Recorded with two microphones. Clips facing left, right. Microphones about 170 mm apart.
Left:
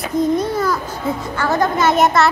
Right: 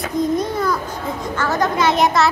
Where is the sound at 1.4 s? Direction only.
10° left (ahead or behind).